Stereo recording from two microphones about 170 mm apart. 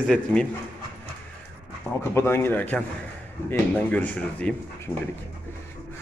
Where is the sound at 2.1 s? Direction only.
15° left (ahead or behind).